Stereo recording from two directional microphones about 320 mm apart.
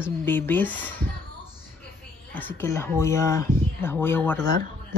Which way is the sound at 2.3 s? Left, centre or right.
Centre.